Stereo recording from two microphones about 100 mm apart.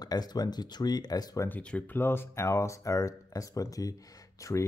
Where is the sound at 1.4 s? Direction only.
15° left (ahead or behind).